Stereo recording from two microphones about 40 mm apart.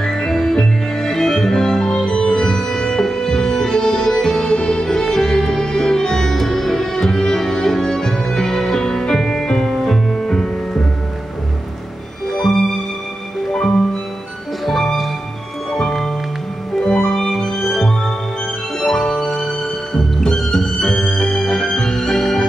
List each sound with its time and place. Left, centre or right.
0.0 s music: centre
12.3 s music: centre
13.6 s music: centre
15.7 s music: centre